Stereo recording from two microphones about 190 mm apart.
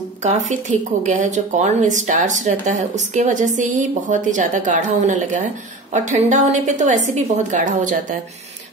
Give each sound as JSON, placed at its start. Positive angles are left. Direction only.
{"t": 0.2, "sound": "speech", "side_deg": -40}